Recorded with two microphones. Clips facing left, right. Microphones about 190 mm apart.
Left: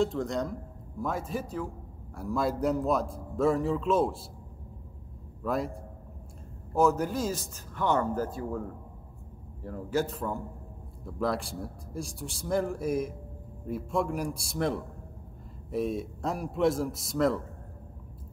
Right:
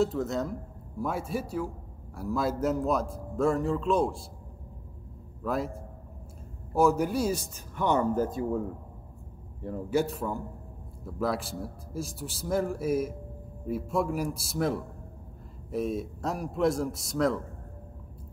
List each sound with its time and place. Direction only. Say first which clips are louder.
0.0 s a man's voice: right 1 dB; 5° right (ahead or behind)
5.4 s a man's voice: even; centre (ahead or behind)
6.7 s a man's voice: right 1 dB; 10° right (ahead or behind)